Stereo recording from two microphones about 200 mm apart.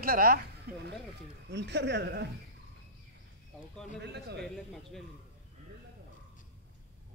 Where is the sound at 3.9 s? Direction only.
55° right (ahead or behind).